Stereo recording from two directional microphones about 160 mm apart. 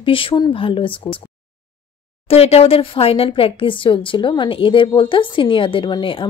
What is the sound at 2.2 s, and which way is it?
Speech, 40° left (ahead or behind).